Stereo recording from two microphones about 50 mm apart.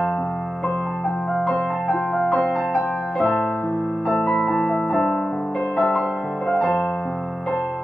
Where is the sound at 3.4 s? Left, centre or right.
Left.